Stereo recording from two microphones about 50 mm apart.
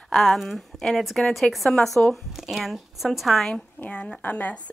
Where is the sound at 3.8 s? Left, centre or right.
Left.